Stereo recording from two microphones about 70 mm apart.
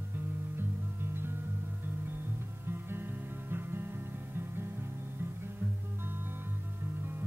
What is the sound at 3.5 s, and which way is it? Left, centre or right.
Music, right.